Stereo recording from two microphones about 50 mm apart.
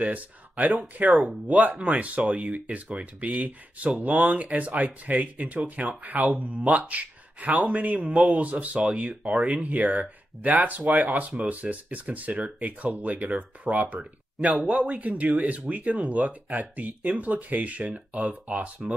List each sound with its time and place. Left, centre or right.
0.1 s speech: right